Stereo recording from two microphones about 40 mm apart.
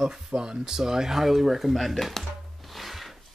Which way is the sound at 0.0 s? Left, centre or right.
Centre.